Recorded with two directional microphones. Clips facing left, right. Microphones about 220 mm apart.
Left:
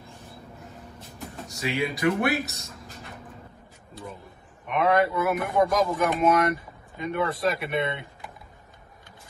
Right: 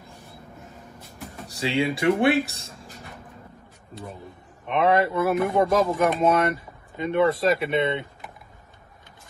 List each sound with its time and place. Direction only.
1.5 s speech: 30° right (ahead or behind)
4.6 s speech: 30° right (ahead or behind)